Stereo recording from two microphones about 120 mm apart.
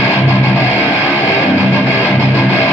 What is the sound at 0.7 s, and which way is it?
Music, 15° right (ahead or behind).